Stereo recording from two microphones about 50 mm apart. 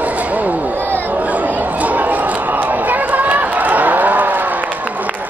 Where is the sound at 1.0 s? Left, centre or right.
Right.